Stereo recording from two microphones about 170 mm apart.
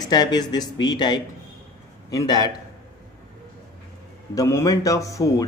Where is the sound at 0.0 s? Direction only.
25° left (ahead or behind).